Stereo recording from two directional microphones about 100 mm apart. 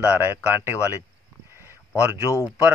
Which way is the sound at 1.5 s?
25° right (ahead or behind).